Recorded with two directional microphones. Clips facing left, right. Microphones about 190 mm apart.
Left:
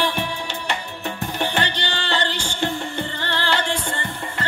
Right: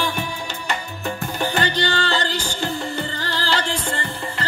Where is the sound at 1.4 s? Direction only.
40° right (ahead or behind).